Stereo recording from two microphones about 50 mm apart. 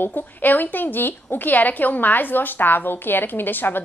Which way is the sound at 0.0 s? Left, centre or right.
Left.